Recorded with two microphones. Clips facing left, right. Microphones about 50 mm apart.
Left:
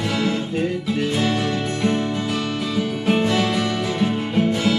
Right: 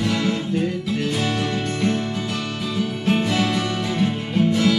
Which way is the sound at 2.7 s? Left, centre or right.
Centre.